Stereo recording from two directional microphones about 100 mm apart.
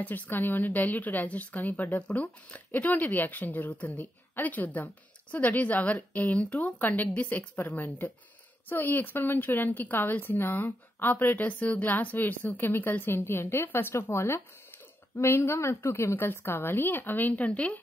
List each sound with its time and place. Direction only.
0.0 s a woman's voice: 15° left (ahead or behind)